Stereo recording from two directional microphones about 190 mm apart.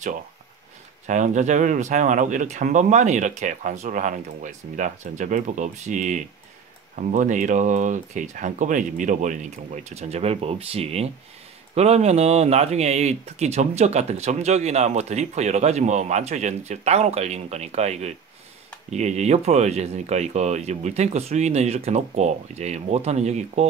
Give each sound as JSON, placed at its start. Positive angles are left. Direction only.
{"t": 1.0, "sound": "speech", "side_deg": -40}